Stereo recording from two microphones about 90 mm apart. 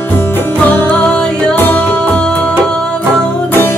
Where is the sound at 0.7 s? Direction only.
20° left (ahead or behind).